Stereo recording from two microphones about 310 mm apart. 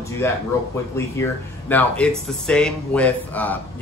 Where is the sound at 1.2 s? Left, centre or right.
Centre.